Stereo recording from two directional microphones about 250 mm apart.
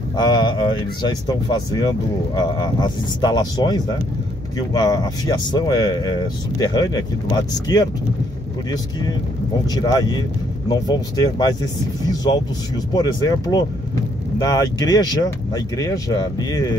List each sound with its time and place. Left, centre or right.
0.1 s speech: centre
9.7 s speech: centre
12.9 s speech: centre